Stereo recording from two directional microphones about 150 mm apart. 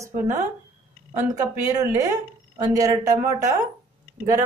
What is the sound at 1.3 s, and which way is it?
A woman's voice, 20° right (ahead or behind).